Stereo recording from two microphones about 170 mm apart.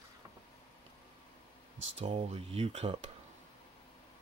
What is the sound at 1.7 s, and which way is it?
Speech, 90° right.